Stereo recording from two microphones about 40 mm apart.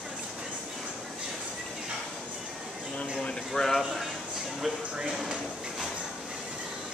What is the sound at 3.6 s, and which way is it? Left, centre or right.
Speech, left.